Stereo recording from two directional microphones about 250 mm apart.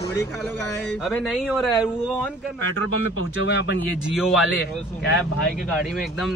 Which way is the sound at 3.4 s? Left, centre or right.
Left.